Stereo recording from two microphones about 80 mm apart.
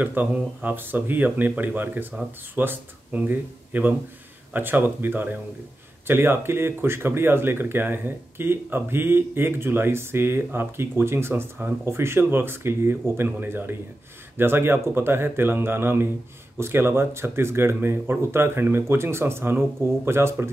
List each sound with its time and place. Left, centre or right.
0.0 s speech: right